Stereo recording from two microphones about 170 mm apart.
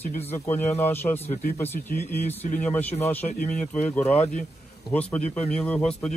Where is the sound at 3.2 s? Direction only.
50° left (ahead or behind).